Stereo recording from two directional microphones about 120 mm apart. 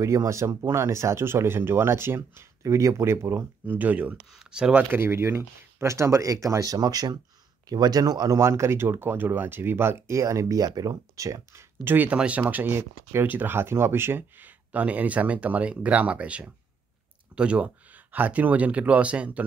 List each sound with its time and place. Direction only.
0.0 s speech: 25° right (ahead or behind); by 4.8 s 5° right (ahead or behind)
4.9 s speech: 20° right (ahead or behind)